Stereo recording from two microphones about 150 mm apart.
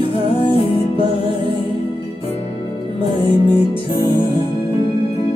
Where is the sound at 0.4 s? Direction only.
35° left (ahead or behind).